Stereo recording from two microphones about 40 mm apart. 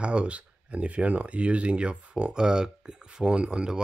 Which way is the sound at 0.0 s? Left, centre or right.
Right.